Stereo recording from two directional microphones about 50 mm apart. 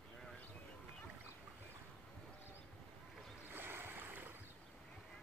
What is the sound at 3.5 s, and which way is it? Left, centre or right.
Boat, right.